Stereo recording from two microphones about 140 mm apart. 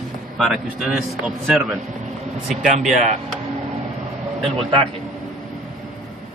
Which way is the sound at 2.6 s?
60° right (ahead or behind).